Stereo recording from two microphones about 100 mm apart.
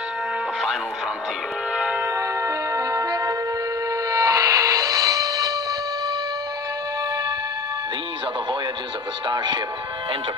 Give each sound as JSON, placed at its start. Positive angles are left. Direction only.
{"t": 1.8, "sound": "a sound", "side_deg": -15}
{"t": 2.0, "sound": "music", "side_deg": -25}
{"t": 9.3, "sound": "speech", "side_deg": -45}